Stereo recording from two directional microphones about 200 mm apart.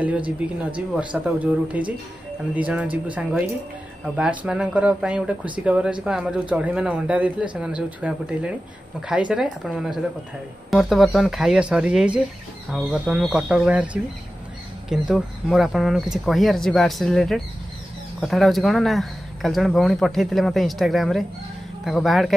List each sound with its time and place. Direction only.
0.4 s speech: 5° right (ahead or behind)
14.9 s speech: centre (ahead or behind)